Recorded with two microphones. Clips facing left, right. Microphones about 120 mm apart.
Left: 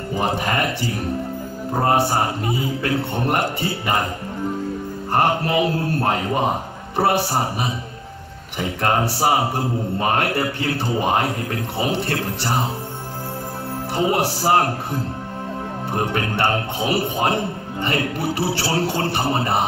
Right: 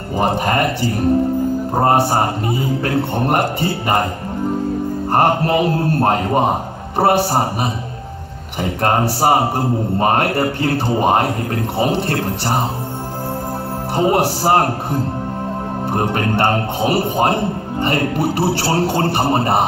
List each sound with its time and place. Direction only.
0.1 s a man's voice: 45° right (ahead or behind)
1.7 s a man's voice: 35° right (ahead or behind)
5.1 s a man's voice: 40° right (ahead or behind)
13.9 s a man's voice: 40° right (ahead or behind)
15.9 s a man's voice: 40° right (ahead or behind)